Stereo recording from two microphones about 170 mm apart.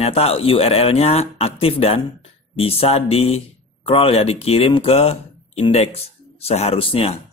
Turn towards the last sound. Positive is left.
turn(degrees=35)  # may be behind; listen again after turning